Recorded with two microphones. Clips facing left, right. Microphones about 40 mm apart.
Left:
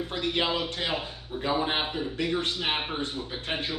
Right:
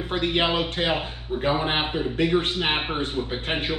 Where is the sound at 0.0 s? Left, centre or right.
Right.